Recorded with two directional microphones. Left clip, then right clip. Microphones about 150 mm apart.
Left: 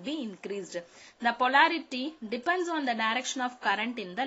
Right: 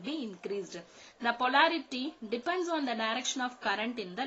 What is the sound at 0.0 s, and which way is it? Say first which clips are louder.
A woman's voice: left 2 dB; 30° left (ahead or behind).